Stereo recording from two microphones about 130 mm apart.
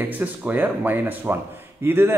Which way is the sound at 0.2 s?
15° right (ahead or behind).